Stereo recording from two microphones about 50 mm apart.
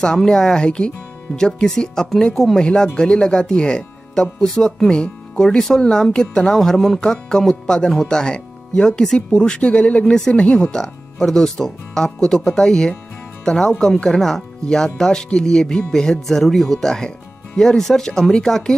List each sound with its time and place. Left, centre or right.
0.0 s speech: centre